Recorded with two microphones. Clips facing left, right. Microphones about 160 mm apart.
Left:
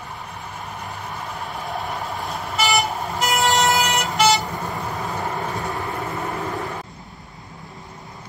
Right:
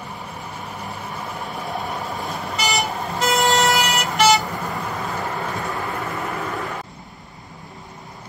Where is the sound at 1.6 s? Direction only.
Centre (ahead or behind).